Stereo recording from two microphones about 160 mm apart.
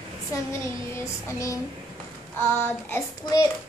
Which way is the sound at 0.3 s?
15° left (ahead or behind).